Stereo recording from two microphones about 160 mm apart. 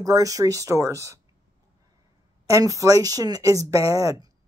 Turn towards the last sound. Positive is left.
turn(degrees=-20)  # may be behind; listen again after turning